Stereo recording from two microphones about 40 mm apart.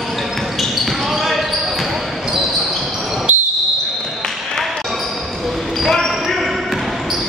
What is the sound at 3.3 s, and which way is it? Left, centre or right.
Basketball bounce, right.